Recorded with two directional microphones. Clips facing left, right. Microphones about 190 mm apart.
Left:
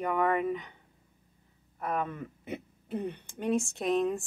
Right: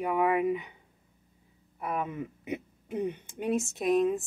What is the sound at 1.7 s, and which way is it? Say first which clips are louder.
A woman's voice: even; 10° right (ahead or behind).